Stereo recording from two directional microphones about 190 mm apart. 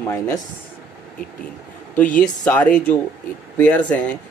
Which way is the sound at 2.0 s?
45° left (ahead or behind).